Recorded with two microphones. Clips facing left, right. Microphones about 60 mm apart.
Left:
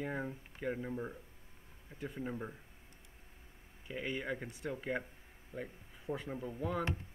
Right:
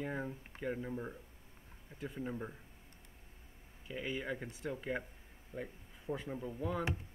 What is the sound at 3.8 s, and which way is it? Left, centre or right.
Speech, centre.